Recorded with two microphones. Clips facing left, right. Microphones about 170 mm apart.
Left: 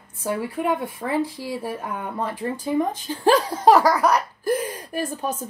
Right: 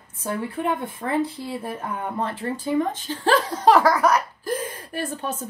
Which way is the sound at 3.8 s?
35° left (ahead or behind).